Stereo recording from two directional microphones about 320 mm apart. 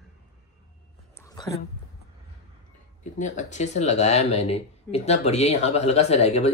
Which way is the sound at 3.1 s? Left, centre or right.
Left.